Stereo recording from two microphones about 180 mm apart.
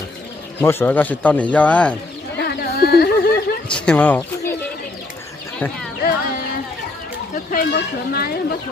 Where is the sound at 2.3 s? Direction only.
65° left (ahead or behind).